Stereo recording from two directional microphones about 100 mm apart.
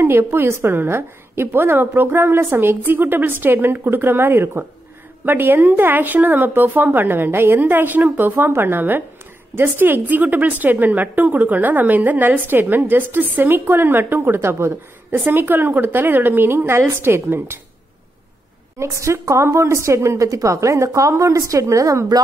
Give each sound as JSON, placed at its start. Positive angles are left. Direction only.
{"t": 0.0, "sound": "a woman's voice", "side_deg": -25}
{"t": 18.8, "sound": "a woman's voice", "side_deg": -30}